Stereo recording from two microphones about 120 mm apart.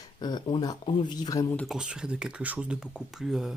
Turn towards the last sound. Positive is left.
turn(degrees=-5)  # may be behind; listen again after turning